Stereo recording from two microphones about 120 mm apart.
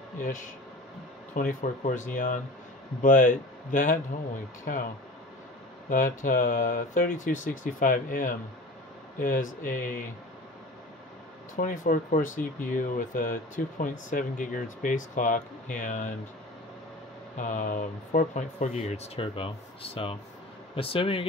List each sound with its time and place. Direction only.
0.2 s speech: 90° left
5.9 s speech: 90° left
11.5 s speech: 90° left
17.4 s speech: 90° left
18.3 s speech: 75° left (ahead or behind); by 21.3 s 50° left (ahead or behind)